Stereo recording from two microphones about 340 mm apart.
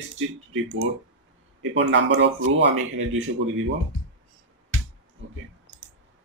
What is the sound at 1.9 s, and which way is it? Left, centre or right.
Speech, right.